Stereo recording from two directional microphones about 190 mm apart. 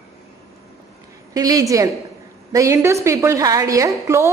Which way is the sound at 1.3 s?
20° right (ahead or behind).